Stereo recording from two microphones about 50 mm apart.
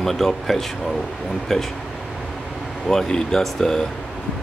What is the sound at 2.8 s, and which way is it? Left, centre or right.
Speech, centre.